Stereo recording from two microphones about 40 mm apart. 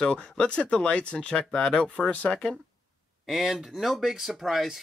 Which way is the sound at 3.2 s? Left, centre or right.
Centre.